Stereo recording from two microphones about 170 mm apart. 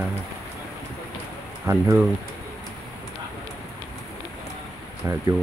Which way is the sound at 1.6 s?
10° right (ahead or behind).